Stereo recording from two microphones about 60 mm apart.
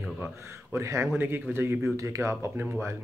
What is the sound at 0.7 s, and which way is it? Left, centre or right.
Speech, right.